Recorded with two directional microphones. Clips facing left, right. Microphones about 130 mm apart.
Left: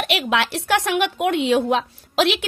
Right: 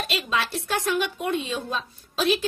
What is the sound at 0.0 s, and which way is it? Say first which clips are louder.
A woman's voice: left 6 dB; 75° left (ahead or behind).